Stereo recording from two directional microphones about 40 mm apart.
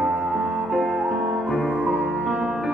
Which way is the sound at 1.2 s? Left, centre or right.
Right.